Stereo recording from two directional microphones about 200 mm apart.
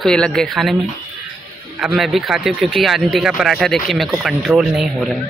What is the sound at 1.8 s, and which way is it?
Speech, centre (ahead or behind).